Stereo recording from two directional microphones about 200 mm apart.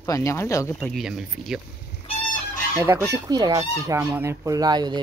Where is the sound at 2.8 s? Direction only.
15° right (ahead or behind).